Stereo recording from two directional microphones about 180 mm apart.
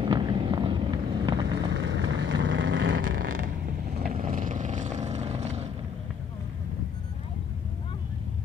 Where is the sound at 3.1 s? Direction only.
50° right (ahead or behind).